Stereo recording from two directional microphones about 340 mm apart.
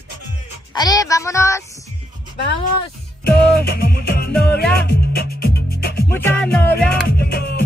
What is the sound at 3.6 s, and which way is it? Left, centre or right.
Music, left.